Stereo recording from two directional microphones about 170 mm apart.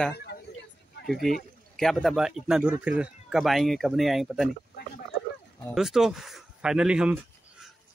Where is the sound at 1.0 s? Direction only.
Centre (ahead or behind).